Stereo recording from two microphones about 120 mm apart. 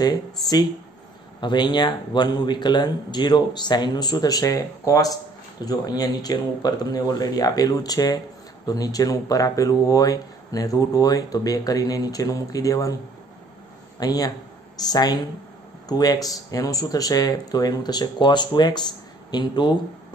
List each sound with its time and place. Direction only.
1.4 s speech: 40° left (ahead or behind)
13.9 s speech: 30° left (ahead or behind)